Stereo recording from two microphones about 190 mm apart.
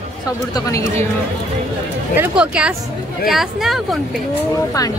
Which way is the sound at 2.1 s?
5° right (ahead or behind).